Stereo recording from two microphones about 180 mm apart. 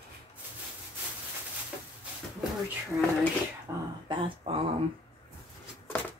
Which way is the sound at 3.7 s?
15° right (ahead or behind).